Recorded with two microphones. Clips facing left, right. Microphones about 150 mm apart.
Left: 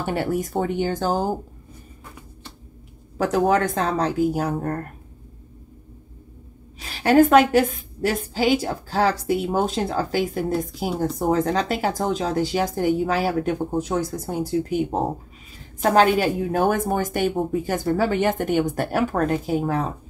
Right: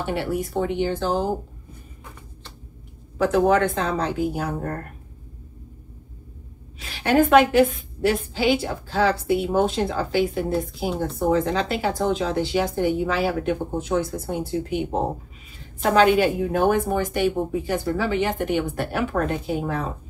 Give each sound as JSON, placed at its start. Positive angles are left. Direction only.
{"t": 0.0, "sound": "a woman's voice", "side_deg": 45}
{"t": 3.2, "sound": "a woman's voice", "side_deg": 40}
{"t": 6.9, "sound": "a woman's voice", "side_deg": 40}
{"t": 15.8, "sound": "a woman's voice", "side_deg": 45}